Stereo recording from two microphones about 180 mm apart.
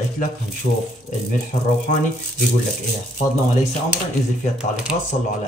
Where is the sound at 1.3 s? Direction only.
45° left (ahead or behind).